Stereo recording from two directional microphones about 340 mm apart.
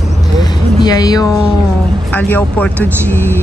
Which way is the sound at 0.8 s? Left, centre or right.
Centre.